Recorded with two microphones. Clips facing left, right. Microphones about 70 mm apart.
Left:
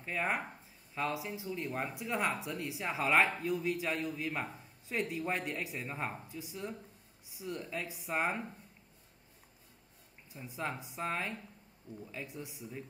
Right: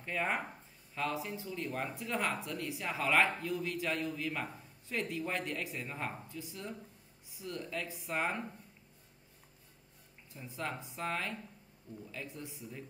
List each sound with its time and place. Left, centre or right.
0.0 s a man's voice: centre
10.3 s a man's voice: centre